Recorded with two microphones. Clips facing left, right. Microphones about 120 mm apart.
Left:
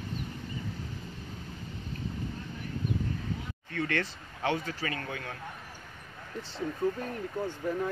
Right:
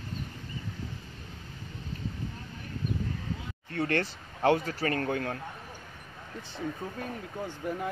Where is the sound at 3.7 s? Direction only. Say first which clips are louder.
Right 3 dB; 40° right (ahead or behind).